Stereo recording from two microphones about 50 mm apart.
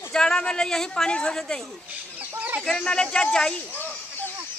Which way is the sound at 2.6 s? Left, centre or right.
Centre.